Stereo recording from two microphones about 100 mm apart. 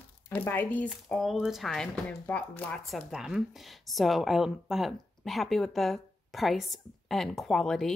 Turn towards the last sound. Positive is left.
turn(degrees=5)  # may be behind; listen again after turning